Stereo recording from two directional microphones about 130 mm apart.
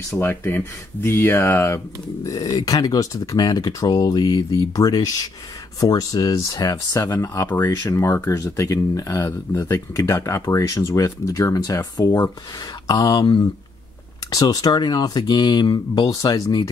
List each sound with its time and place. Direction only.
0.1 s speech: 20° left (ahead or behind)